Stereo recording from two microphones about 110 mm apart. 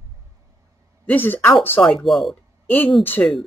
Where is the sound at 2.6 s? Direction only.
15° left (ahead or behind).